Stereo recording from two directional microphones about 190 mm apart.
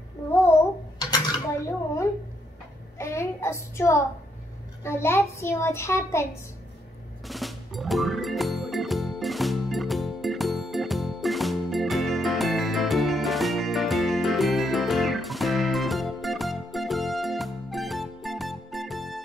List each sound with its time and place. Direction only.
0.9 s dishes: 20° left (ahead or behind)
3.0 s child singing: 15° left (ahead or behind)
4.8 s a child's voice: 15° left (ahead or behind)
7.2 s music: centre (ahead or behind)